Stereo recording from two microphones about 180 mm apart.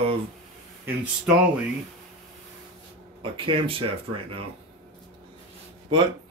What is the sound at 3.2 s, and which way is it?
Speech, 30° right (ahead or behind).